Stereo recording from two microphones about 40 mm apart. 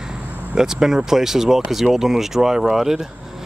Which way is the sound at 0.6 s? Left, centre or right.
Centre.